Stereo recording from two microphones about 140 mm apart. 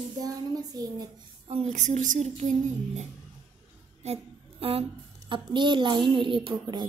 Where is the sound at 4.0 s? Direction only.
45° right (ahead or behind).